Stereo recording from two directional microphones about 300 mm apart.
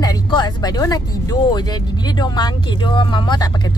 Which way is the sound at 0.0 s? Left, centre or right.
Centre.